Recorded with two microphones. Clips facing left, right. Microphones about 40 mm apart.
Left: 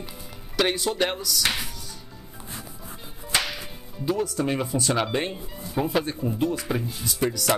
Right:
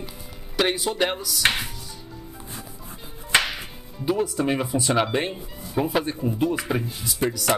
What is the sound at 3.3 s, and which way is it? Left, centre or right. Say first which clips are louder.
Whip: right 5 dB; right.